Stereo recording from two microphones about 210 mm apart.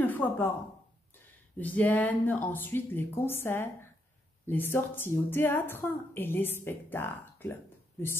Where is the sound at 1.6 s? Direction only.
10° left (ahead or behind).